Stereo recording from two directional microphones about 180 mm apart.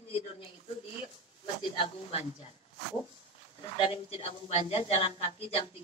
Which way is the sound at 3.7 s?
30° left (ahead or behind).